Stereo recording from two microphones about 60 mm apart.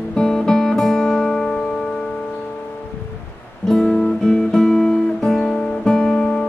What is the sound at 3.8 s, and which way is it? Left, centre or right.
Guitar, left.